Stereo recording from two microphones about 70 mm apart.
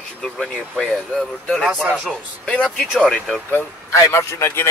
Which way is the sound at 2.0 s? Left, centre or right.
Centre.